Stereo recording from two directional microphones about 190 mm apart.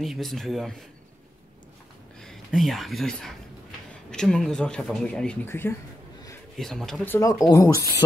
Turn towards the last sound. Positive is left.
turn(degrees=15)  # may be behind; listen again after turning